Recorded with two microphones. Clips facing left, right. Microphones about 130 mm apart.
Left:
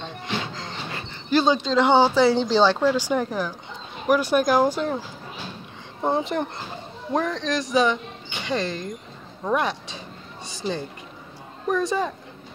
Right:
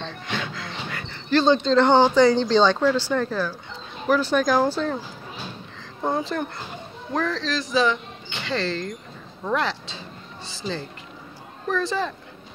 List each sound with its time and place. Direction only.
0.4 s music: 35° left (ahead or behind)
1.3 s speech: 10° left (ahead or behind)
6.0 s speech: 20° left (ahead or behind)
11.6 s speech: 20° left (ahead or behind)